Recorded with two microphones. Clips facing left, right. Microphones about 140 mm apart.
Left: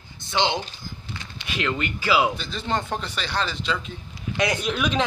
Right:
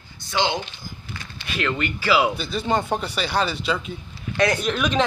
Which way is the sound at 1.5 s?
5° left (ahead or behind).